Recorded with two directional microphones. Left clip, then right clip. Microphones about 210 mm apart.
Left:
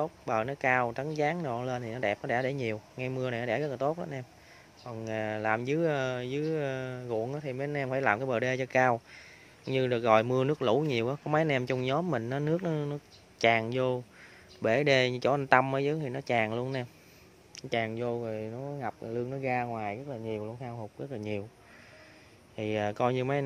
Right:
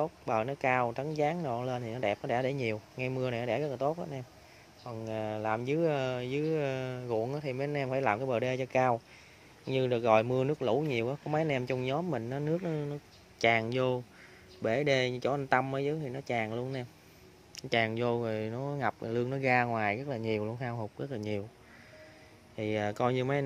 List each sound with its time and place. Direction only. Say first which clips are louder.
0.0 s speech: left 1 dB; 5° left (ahead or behind)
14.6 s speech: left 3 dB; 15° left (ahead or behind)
17.6 s speech: right 2 dB; centre (ahead or behind)
17.9 s speech: right 2 dB; 15° right (ahead or behind)
21.0 s speech: left 2 dB; 5° right (ahead or behind)
22.6 s speech: left 2 dB; 5° left (ahead or behind)